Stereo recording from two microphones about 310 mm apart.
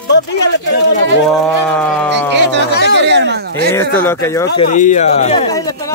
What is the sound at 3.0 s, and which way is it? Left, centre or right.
Speech, right.